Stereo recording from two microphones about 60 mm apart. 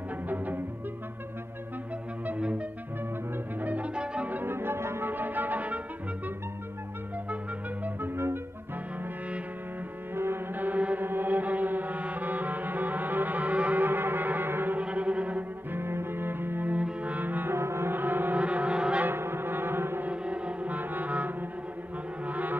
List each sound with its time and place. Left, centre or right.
2.2 s music: right
3.6 s music: right
4.3 s music: right
5.1 s music: right
10.1 s music: right
14.8 s music: right
15.7 s cello: right
16.8 s music: right
18.4 s music: right
19.0 s music: right
20.1 s music: right
22.2 s foghorn: right